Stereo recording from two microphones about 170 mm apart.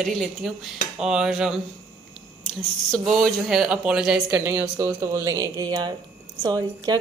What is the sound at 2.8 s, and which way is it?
A woman's voice, centre (ahead or behind).